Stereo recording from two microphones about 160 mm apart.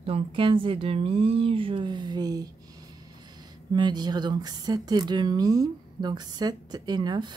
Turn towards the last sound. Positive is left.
turn(degrees=-25)  # may be behind; listen again after turning